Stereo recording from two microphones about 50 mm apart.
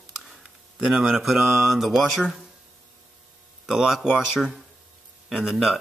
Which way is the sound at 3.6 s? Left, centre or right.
Centre.